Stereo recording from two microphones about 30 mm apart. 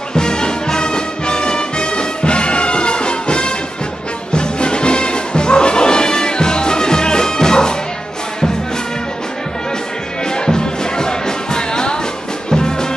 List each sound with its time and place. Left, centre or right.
0.1 s music: left
10.3 s music: left